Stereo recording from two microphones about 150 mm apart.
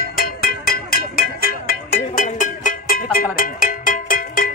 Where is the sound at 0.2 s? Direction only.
80° left.